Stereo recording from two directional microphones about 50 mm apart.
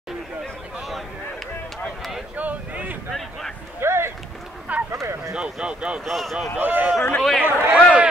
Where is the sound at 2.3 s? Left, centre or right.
Right.